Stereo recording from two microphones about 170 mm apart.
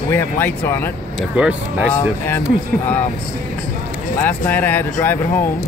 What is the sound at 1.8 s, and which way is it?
Speech, 10° left (ahead or behind).